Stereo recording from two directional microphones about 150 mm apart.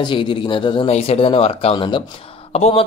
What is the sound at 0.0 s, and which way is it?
A man's voice, 35° left (ahead or behind).